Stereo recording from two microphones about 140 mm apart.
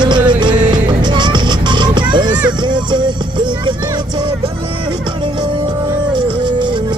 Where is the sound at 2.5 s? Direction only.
35° right (ahead or behind).